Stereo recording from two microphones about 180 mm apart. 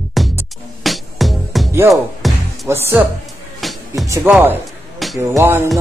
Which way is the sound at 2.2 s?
Centre (ahead or behind).